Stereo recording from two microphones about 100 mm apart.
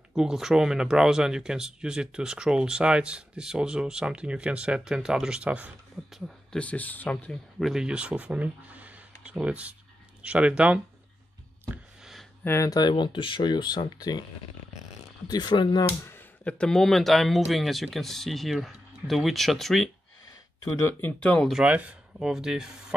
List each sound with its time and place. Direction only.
0.1 s speech: 5° right (ahead or behind)
6.1 s speech: centre (ahead or behind)
6.6 s speech: 15° left (ahead or behind)
7.6 s speech: 5° right (ahead or behind)
12.0 s a sound: centre (ahead or behind)
12.4 s speech: 35° left (ahead or behind)
15.2 s speech: 45° left (ahead or behind)
16.1 s a sound: 20° left (ahead or behind)
16.5 s speech: 5° left (ahead or behind)
20.6 s speech: 25° left (ahead or behind)
21.5 s speech: 10° right (ahead or behind)